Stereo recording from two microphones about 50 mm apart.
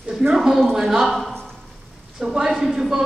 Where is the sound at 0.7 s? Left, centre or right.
Centre.